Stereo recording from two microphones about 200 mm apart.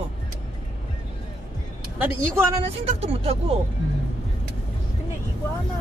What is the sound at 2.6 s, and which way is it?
Speech, 30° right (ahead or behind).